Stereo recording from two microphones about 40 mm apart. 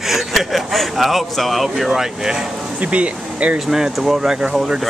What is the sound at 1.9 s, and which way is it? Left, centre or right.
Speech, centre.